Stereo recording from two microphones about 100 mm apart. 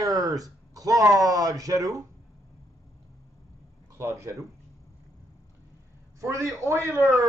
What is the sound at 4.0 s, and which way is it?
Speech, 25° right (ahead or behind).